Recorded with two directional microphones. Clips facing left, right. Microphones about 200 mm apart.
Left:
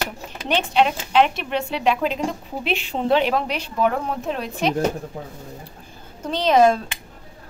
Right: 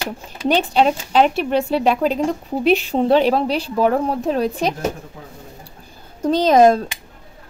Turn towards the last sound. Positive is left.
turn(degrees=-40)  # may be behind; listen again after turning